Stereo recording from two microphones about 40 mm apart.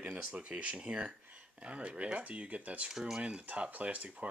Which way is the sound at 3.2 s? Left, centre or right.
Right.